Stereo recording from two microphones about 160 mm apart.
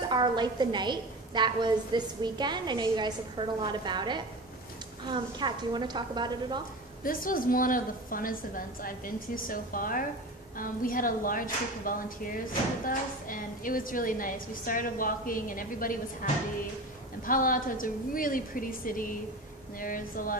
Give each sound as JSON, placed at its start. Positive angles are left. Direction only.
{"t": 0.1, "sound": "a woman's voice", "side_deg": -25}
{"t": 7.0, "sound": "a woman's voice", "side_deg": 60}
{"t": 17.3, "sound": "a woman's voice", "side_deg": 60}